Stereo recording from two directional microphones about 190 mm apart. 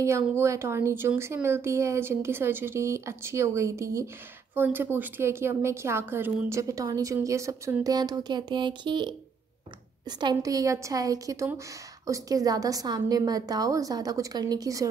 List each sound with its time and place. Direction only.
0.0 s a woman's voice: 15° right (ahead or behind)